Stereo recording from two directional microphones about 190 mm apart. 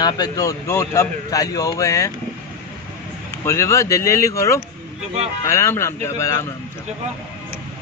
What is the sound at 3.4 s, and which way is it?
Speech, 15° left (ahead or behind).